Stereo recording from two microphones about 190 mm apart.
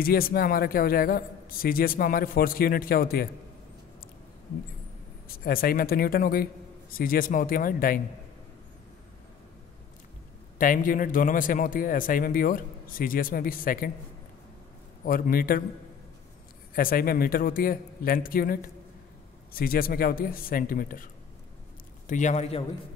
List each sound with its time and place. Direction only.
0.0 s a man's voice: 50° left (ahead or behind)
5.4 s a man's voice: 50° left (ahead or behind)
10.6 s a man's voice: 45° left (ahead or behind)
15.0 s a man's voice: 50° left (ahead or behind)
16.7 s a man's voice: 50° left (ahead or behind); by 22.7 s 30° left (ahead or behind)